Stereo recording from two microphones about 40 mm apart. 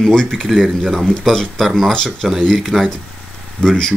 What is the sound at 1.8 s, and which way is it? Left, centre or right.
Speech, centre.